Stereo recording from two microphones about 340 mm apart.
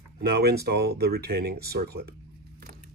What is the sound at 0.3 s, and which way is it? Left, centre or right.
Speech, right.